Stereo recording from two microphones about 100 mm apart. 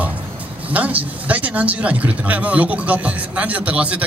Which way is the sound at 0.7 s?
15° right (ahead or behind).